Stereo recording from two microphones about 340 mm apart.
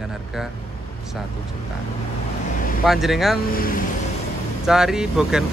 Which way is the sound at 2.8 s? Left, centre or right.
Centre.